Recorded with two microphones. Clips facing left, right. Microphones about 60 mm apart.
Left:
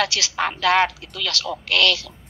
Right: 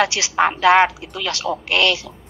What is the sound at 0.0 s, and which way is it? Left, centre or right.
A woman's voice, right.